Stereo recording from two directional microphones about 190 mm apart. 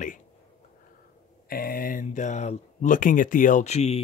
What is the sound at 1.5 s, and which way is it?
Speech, 50° left (ahead or behind).